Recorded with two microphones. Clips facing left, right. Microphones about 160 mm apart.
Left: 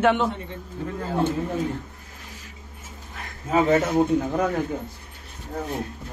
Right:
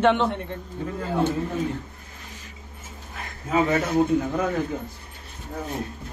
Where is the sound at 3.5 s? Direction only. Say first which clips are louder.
Left 2 dB; 25° left (ahead or behind).